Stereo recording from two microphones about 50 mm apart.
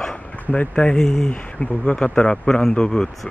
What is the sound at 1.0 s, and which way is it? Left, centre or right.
Speech, centre.